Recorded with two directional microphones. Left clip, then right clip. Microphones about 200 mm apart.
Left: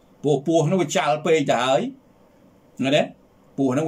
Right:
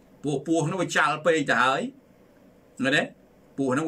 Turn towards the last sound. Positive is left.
turn(degrees=15)  # may be behind; listen again after turning